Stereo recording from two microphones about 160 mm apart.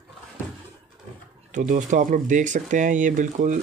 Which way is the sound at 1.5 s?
50° right (ahead or behind).